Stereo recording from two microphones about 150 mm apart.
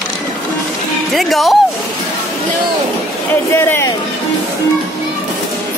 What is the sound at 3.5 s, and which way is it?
Speech, 15° left (ahead or behind).